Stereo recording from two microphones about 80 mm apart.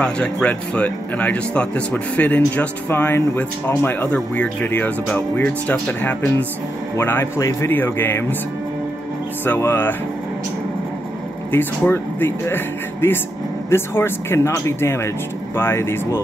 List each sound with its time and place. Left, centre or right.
0.0 s speech: centre
7.3 s speech: left
7.7 s speech: left
9.6 s speech: left
11.5 s speech: left